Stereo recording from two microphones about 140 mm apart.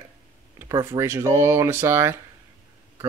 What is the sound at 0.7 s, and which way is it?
Speech, 35° right (ahead or behind).